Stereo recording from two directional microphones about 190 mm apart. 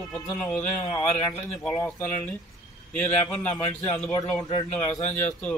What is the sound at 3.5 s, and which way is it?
Speech, 10° left (ahead or behind).